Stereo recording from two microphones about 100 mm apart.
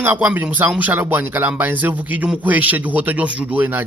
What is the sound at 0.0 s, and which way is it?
A man's voice, 20° right (ahead or behind).